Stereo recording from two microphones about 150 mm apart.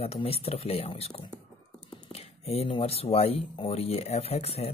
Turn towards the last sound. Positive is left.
turn(degrees=45)  # may be behind; listen again after turning